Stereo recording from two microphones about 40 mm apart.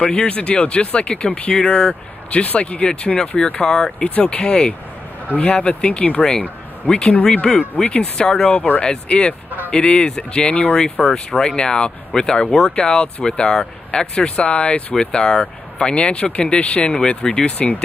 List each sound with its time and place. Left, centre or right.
0.0 s speech: left
2.8 s speech: left
4.0 s speech: left
7.3 s speech: left
8.5 s speech: left
8.8 s speech: left
15.0 s speech: centre
17.5 s speech: left